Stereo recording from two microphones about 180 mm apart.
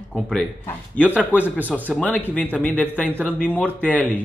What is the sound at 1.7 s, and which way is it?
Speech, 5° left (ahead or behind).